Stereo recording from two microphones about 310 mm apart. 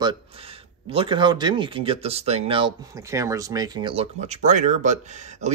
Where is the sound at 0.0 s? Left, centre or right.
Centre.